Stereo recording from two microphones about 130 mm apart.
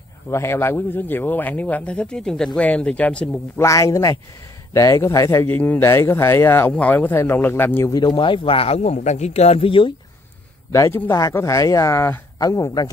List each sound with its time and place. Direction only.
0.3 s speech: 20° left (ahead or behind)
3.5 s speech: 25° left (ahead or behind)
7.9 s a man's voice: 35° left (ahead or behind)
10.7 s speech: 20° left (ahead or behind)